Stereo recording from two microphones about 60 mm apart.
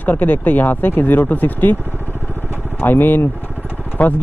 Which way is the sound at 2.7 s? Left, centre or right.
Left.